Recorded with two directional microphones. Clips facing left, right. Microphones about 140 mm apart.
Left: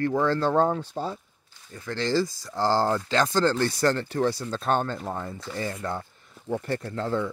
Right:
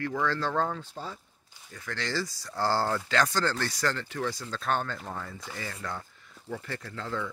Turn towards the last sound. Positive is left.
turn(degrees=30)  # may be behind; listen again after turning